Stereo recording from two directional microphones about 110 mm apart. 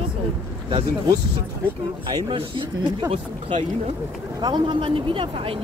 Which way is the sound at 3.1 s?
65° right (ahead or behind).